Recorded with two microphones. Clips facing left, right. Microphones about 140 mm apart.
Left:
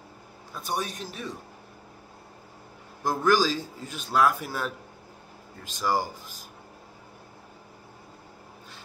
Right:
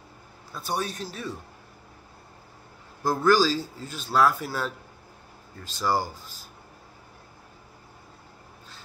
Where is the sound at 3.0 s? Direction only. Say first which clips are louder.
Right 2 dB; 15° left (ahead or behind).